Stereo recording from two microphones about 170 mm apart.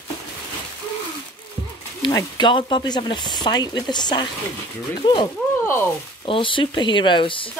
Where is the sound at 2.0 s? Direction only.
25° left (ahead or behind).